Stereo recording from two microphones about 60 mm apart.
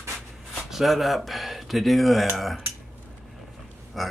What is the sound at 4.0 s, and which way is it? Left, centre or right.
Speech, centre.